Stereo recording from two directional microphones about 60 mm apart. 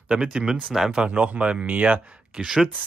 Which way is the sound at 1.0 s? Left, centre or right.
Centre.